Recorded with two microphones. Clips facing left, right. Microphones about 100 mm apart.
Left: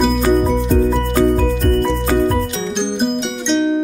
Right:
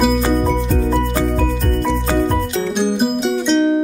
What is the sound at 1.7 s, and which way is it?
Music, centre (ahead or behind).